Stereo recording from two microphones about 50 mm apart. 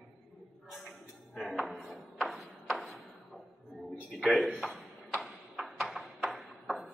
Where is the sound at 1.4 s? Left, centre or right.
Centre.